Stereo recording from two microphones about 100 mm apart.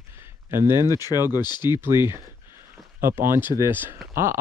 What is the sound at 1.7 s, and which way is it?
Speech, 25° right (ahead or behind).